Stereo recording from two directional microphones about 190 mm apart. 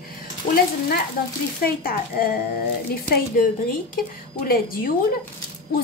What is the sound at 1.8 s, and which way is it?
Speech, 50° left (ahead or behind).